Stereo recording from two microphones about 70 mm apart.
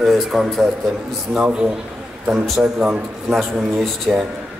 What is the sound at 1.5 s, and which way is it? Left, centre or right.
A man's voice, centre.